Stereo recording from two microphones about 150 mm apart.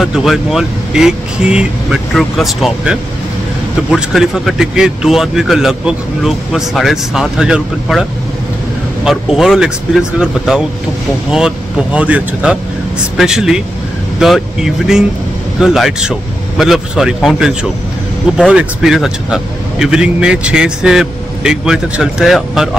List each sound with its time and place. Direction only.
0.0 s speech: 5° right (ahead or behind)
9.0 s speech: 5° right (ahead or behind)